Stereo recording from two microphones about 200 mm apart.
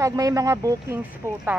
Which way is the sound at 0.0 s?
15° right (ahead or behind).